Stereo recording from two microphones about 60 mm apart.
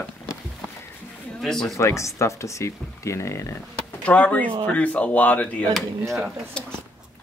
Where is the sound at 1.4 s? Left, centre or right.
Centre.